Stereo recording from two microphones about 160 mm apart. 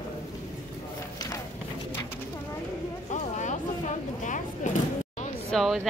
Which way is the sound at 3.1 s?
50° left (ahead or behind).